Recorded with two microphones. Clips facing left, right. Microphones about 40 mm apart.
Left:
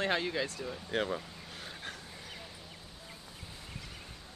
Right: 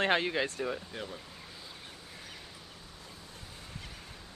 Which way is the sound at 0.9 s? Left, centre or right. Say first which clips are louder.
Left 8 dB; left.